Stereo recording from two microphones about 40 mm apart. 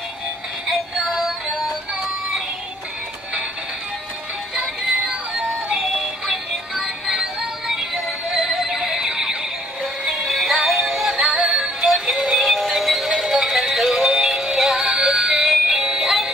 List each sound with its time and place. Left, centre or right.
0.7 s synthetic singing: centre
5.8 s synthetic singing: centre
10.2 s synthetic singing: centre
11.1 s synthetic singing: centre
12.4 s music: centre